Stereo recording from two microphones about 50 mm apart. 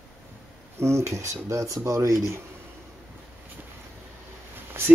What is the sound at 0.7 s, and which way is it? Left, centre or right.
Speech, right.